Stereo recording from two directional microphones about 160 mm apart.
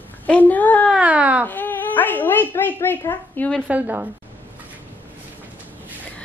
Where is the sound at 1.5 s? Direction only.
10° left (ahead or behind).